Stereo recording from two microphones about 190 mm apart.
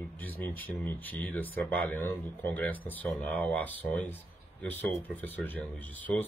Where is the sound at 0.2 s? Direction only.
10° left (ahead or behind).